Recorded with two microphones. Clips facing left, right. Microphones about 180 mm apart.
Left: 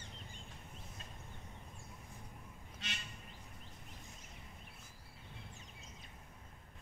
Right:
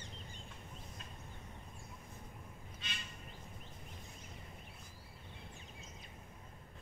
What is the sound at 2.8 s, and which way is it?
Duck, 80° left.